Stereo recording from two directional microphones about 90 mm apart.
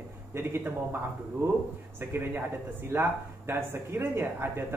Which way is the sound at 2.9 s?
25° right (ahead or behind).